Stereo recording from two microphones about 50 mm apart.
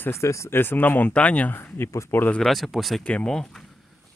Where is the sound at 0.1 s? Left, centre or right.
Left.